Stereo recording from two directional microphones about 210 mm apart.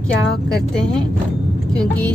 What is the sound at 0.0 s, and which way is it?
Speech, centre (ahead or behind).